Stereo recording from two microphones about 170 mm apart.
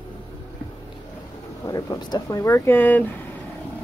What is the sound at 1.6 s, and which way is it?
Speech, 20° left (ahead or behind).